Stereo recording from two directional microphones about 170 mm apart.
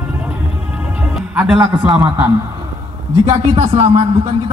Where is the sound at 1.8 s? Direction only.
10° right (ahead or behind).